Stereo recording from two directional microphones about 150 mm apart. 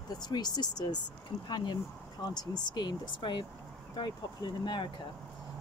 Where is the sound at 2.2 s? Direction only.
30° left (ahead or behind).